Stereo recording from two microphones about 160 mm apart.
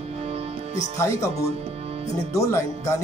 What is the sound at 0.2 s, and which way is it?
Music, 40° right (ahead or behind).